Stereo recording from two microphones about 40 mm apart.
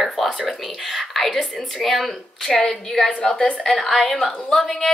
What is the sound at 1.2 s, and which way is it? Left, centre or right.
Speech, centre.